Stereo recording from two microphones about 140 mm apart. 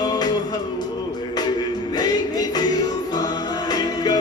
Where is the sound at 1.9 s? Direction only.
30° left (ahead or behind).